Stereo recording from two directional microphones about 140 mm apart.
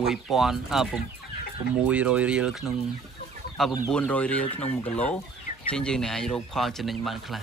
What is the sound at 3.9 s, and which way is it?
Speech, 10° left (ahead or behind).